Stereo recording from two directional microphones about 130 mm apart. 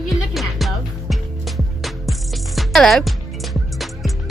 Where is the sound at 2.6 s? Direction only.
5° left (ahead or behind).